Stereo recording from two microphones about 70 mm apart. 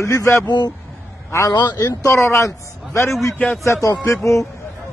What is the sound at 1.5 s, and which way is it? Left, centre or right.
Speech, left.